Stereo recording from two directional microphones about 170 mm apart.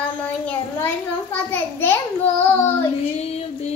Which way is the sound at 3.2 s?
35° left (ahead or behind).